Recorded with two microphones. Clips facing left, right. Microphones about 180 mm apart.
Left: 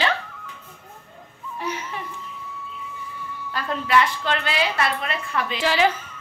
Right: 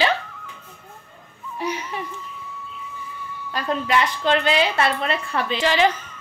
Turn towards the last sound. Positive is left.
turn(degrees=5)  # may be behind; listen again after turning